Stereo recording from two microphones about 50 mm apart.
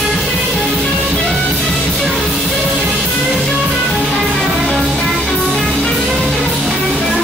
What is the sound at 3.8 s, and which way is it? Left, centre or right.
Music, centre.